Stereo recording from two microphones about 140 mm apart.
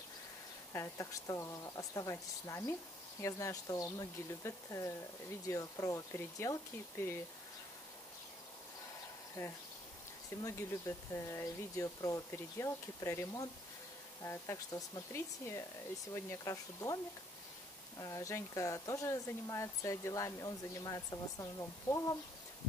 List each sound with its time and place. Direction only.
0.7 s speech: 20° left (ahead or behind)
9.4 s speech: 20° left (ahead or behind)